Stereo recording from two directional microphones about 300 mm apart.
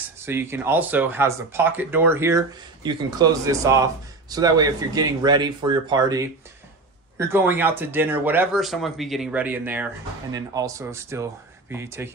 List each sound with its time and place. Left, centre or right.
0.2 s speech: centre